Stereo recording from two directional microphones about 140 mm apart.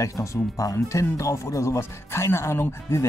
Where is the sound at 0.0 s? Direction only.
20° left (ahead or behind).